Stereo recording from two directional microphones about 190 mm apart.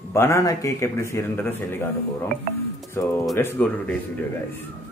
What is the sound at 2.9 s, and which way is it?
A man's voice, 15° left (ahead or behind).